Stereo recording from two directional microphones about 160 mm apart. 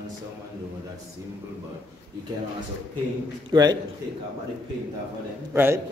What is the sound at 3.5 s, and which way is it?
Speech, 25° right (ahead or behind).